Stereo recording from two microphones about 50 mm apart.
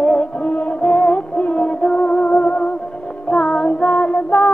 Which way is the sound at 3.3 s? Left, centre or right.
Left.